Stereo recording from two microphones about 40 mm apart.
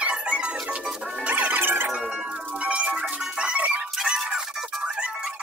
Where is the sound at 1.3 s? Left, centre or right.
Right.